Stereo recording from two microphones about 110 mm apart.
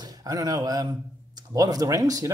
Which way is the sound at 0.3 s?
35° right (ahead or behind).